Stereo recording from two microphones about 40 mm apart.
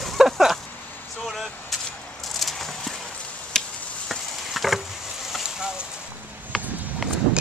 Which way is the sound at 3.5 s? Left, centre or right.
Centre.